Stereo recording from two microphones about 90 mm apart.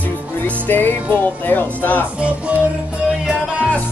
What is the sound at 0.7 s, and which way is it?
Speech, 20° left (ahead or behind).